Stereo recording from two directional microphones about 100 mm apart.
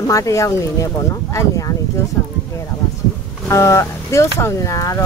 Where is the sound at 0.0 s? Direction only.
35° left (ahead or behind).